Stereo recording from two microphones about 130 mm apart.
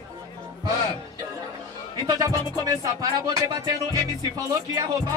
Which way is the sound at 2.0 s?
25° right (ahead or behind).